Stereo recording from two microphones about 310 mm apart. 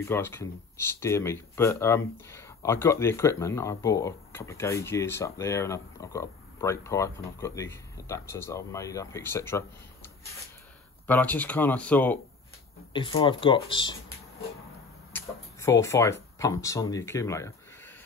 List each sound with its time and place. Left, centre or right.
0.0 s speech: centre
12.9 s speech: centre
15.1 s speech: centre